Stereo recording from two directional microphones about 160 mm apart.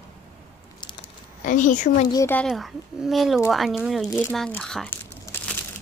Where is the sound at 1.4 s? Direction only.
55° left (ahead or behind).